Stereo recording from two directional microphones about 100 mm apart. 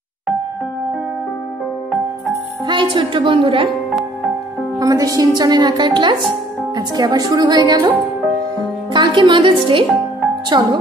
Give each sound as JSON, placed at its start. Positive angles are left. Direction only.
{"t": 2.6, "sound": "a woman's voice", "side_deg": -50}
{"t": 4.7, "sound": "a woman's voice", "side_deg": -35}
{"t": 8.9, "sound": "a woman's voice", "side_deg": -50}